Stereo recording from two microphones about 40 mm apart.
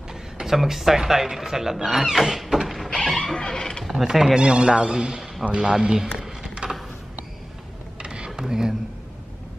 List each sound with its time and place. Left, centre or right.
0.1 s a sound: centre
0.6 s speech: centre
3.1 s music: centre
3.3 s wild animals: centre
3.9 s speech: centre
4.4 s a man's voice: right
6.6 s mechanisms: right
8.0 s mechanisms: right
8.4 s speech: centre